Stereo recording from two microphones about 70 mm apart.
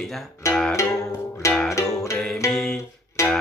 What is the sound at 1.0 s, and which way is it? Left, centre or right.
Music, left.